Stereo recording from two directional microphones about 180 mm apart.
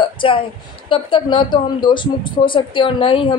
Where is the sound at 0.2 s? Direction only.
30° left (ahead or behind).